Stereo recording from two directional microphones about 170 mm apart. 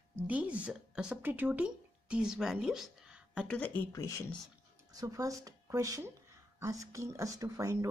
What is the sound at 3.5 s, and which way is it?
Speech, 10° left (ahead or behind).